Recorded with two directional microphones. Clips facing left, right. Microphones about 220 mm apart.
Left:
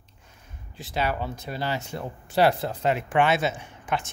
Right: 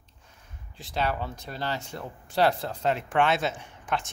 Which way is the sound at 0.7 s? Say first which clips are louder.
Left 1 dB; 5° left (ahead or behind).